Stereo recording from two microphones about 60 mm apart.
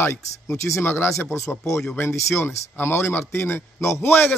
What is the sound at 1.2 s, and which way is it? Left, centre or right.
Speech, left.